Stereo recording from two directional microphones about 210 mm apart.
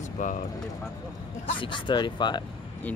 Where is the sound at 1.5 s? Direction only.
25° left (ahead or behind).